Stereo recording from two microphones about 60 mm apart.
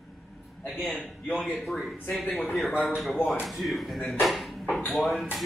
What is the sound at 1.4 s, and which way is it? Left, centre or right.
Speech, centre.